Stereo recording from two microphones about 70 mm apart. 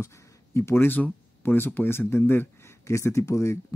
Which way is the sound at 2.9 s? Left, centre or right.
Left.